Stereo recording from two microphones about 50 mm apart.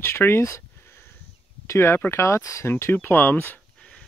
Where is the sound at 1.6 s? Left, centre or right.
Left.